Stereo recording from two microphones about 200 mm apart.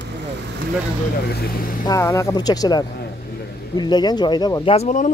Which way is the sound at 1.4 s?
45° left (ahead or behind).